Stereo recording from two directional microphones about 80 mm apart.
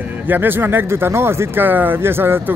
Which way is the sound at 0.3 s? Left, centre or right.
Right.